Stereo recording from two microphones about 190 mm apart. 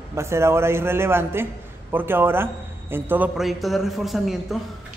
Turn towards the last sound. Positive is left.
turn(degrees=0)  # may be behind; listen again after turning